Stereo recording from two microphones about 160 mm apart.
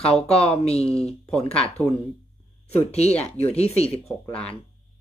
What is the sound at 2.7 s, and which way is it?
Speech, 40° left (ahead or behind).